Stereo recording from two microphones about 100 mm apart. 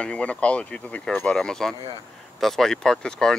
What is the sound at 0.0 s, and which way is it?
Speech, 10° left (ahead or behind).